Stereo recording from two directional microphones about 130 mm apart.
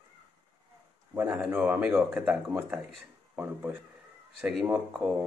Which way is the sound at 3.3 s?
15° right (ahead or behind).